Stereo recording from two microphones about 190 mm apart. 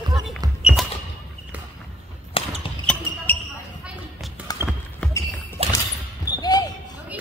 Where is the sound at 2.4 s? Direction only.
30° left (ahead or behind).